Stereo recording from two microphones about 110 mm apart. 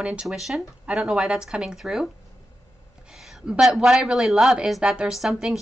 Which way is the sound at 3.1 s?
Centre (ahead or behind).